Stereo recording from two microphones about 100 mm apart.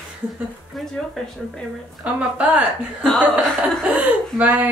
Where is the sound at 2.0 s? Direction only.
15° right (ahead or behind).